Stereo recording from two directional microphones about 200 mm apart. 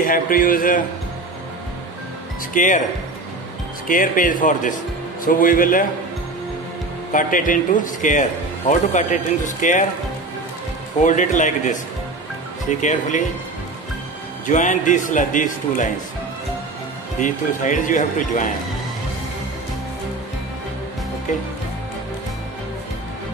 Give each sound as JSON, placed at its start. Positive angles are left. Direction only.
{"t": 0.0, "sound": "speech", "side_deg": 45}
{"t": 2.5, "sound": "speech", "side_deg": 40}
{"t": 3.8, "sound": "speech", "side_deg": 45}
{"t": 7.1, "sound": "speech", "side_deg": 40}
{"t": 11.1, "sound": "speech", "side_deg": 40}
{"t": 14.4, "sound": "speech", "side_deg": 40}
{"t": 17.2, "sound": "speech", "side_deg": 40}